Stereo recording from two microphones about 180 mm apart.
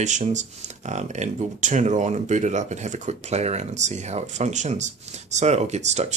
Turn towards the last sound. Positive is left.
turn(degrees=-40)  # may be behind; listen again after turning